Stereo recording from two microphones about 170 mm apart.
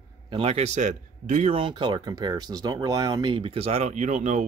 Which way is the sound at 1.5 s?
30° right (ahead or behind).